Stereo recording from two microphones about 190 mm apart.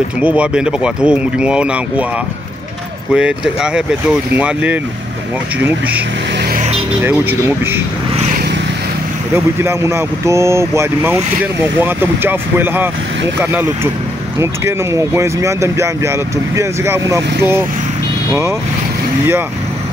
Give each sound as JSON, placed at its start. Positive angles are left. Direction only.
{"t": 0.2, "sound": "speech", "side_deg": -5}
{"t": 3.1, "sound": "speech", "side_deg": -5}
{"t": 6.5, "sound": "vehicle", "side_deg": -35}
{"t": 7.0, "sound": "speech", "side_deg": -10}
{"t": 9.3, "sound": "speech", "side_deg": -15}
{"t": 14.4, "sound": "speech", "side_deg": -15}